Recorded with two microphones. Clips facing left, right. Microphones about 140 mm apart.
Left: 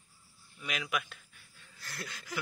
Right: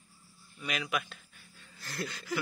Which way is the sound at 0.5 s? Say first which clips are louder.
Right 2 dB; centre (ahead or behind).